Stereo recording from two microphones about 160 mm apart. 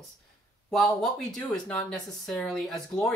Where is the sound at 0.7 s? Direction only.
Centre (ahead or behind).